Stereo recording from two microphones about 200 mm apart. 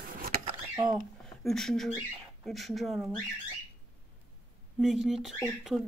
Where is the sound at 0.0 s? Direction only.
45° right (ahead or behind).